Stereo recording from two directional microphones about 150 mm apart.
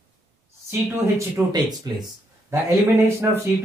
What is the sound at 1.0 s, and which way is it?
Speech, 20° right (ahead or behind).